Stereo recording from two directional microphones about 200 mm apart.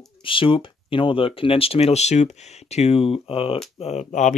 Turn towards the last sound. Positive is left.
turn(degrees=35)  # may be behind; listen again after turning